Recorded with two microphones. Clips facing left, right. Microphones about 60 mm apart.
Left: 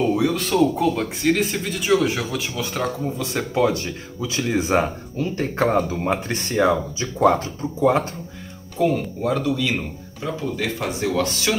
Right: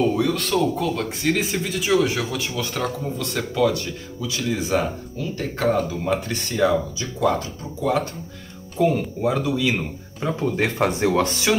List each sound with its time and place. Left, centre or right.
0.1 s speech: centre
3.5 s speech: left
8.7 s speech: centre
10.5 s speech: right